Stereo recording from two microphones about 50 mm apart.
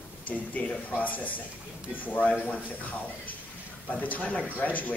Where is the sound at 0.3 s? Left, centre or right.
Left.